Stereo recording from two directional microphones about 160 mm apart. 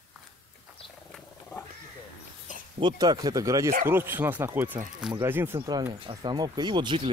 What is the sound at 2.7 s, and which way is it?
Speech, 25° right (ahead or behind).